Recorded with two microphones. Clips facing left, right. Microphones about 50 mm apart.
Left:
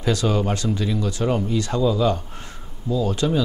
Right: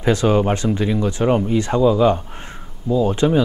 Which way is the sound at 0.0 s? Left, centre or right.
Right.